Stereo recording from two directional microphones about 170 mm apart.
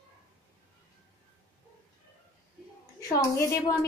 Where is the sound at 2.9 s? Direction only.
20° left (ahead or behind).